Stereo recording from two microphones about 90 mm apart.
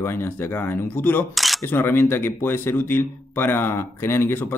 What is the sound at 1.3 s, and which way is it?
Camera, centre (ahead or behind).